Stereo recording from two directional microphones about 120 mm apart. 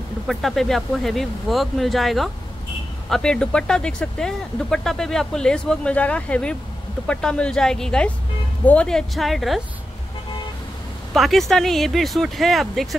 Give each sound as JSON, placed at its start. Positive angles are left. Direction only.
{"t": 0.3, "sound": "speech", "side_deg": 0}
{"t": 11.1, "sound": "speech", "side_deg": 0}